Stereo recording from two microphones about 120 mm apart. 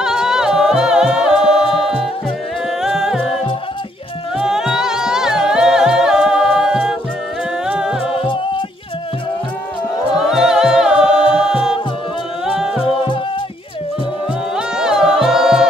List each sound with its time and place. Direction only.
0.0 s a capella: 5° right (ahead or behind)
2.8 s a capella: 5° right (ahead or behind)
4.4 s music: 5° right (ahead or behind)
4.7 s a capella: 5° right (ahead or behind)
8.2 s music: 45° left (ahead or behind)
10.1 s music: 5° right (ahead or behind)
14.8 s music: 5° right (ahead or behind)